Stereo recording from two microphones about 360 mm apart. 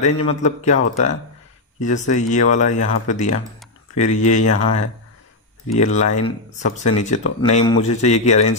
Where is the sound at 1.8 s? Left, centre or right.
Centre.